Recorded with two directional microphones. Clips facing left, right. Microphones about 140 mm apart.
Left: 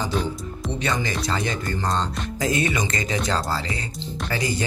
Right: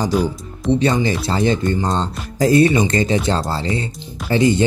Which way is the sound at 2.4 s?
35° right (ahead or behind).